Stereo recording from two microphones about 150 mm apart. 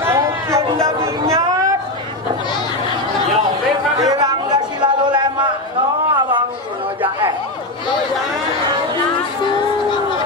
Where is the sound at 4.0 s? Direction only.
25° right (ahead or behind).